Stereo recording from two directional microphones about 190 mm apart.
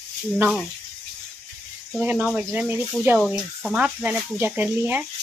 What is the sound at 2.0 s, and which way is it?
Speech, 5° right (ahead or behind).